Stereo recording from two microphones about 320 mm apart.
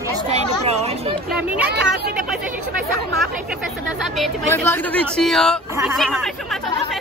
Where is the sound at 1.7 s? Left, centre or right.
Right.